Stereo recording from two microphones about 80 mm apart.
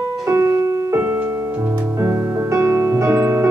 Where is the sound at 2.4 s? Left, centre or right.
Right.